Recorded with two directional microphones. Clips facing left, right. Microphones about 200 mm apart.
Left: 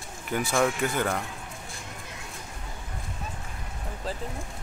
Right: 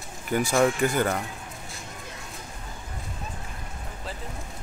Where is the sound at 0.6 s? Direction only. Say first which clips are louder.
Right 3 dB; centre (ahead or behind).